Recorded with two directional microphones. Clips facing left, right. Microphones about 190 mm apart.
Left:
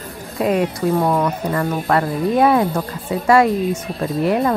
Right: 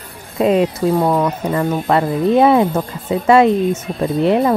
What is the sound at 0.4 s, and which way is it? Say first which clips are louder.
Speech: right 4 dB; 25° right (ahead or behind).